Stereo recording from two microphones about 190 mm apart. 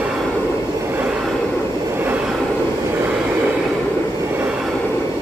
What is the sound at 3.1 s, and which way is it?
Vehicle, 5° right (ahead or behind).